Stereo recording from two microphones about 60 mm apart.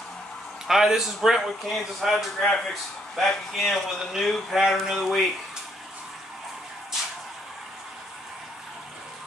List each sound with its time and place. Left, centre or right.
0.7 s speech: centre